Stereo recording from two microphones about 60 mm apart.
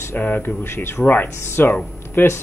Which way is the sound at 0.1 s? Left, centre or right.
Left.